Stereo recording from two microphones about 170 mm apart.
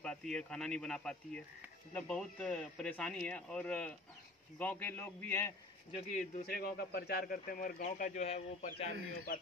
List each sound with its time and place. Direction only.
0.0 s speech: 5° left (ahead or behind)
5.9 s speech: 40° left (ahead or behind)
6.4 s speech: 65° left (ahead or behind); by 8.9 s 40° left (ahead or behind)